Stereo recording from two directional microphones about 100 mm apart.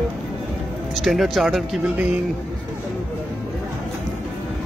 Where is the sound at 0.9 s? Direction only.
Centre (ahead or behind).